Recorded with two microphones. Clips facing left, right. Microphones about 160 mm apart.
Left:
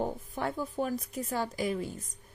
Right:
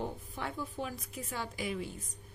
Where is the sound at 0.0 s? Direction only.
45° left (ahead or behind).